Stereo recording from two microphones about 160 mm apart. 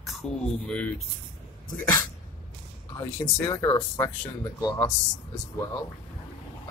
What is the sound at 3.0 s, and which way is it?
Speech, 25° left (ahead or behind).